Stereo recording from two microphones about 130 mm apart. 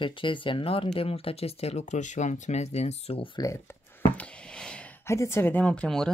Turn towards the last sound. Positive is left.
turn(degrees=5)  # may be behind; listen again after turning